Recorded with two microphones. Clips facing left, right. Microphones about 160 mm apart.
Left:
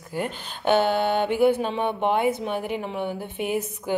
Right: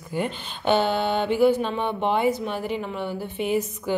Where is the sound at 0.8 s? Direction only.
50° left (ahead or behind).